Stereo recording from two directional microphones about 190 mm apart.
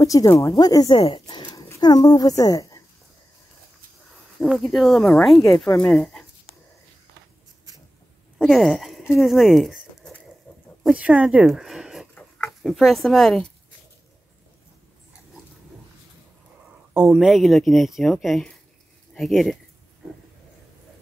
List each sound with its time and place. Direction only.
0.0 s speech: 20° left (ahead or behind)
4.4 s speech: centre (ahead or behind)
8.4 s a sound: centre (ahead or behind)
9.2 s speech: centre (ahead or behind)
16.9 s speech: 5° right (ahead or behind)